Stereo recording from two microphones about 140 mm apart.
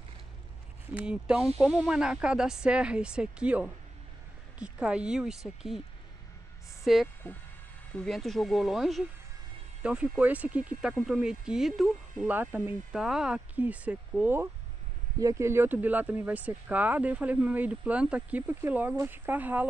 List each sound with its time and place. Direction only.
0.9 s speech: 5° right (ahead or behind)
6.8 s a woman's voice: centre (ahead or behind)